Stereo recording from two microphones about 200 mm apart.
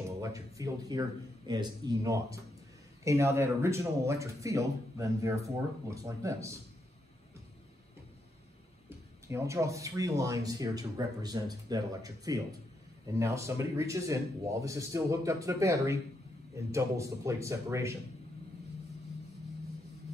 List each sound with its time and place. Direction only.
0.2 s speech: 15° right (ahead or behind)
8.8 s speech: 15° right (ahead or behind)